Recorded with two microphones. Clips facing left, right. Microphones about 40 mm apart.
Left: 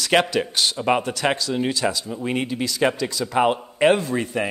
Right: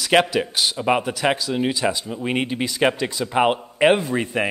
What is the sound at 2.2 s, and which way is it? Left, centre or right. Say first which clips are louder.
A man's voice: right 1 dB; right.